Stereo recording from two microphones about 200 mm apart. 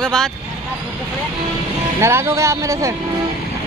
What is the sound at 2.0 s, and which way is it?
Speech, 15° right (ahead or behind).